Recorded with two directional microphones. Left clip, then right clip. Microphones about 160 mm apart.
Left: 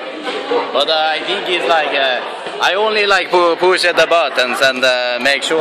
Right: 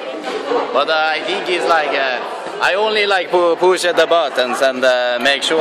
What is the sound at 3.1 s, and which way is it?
Speech, 5° left (ahead or behind).